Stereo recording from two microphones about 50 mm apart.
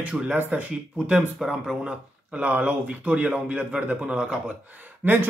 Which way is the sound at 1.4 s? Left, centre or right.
Centre.